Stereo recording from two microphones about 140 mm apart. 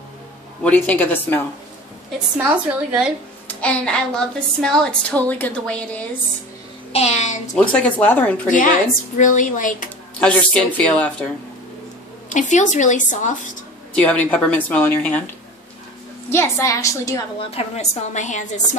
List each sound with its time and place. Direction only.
0.7 s a woman's voice: 10° left (ahead or behind)
2.3 s a woman's voice: 10° right (ahead or behind)
3.4 s a woman's voice: 5° left (ahead or behind)
6.9 s a woman's voice: 50° left (ahead or behind)
7.5 s a woman's voice: 10° left (ahead or behind)
9.2 s a woman's voice: 65° left (ahead or behind)
10.2 s a woman's voice: 5° left (ahead or behind)
12.3 s a woman's voice: 60° left (ahead or behind)
13.9 s a woman's voice: 10° left (ahead or behind)
16.3 s a woman's voice: 15° left (ahead or behind)
17.4 s a woman's voice: 45° left (ahead or behind); by 18.8 s 60° left (ahead or behind)